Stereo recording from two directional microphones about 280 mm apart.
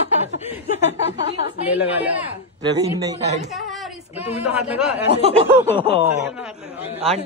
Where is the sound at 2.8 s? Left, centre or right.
Right.